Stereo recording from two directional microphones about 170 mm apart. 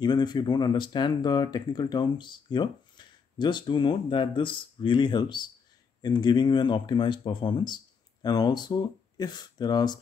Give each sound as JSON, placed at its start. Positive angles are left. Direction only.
{"t": 0.0, "sound": "speech", "side_deg": 25}